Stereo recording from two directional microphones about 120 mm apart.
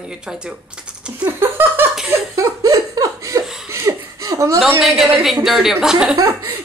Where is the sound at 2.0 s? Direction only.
25° right (ahead or behind).